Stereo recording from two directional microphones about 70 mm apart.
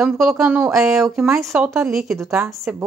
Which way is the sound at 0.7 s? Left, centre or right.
Centre.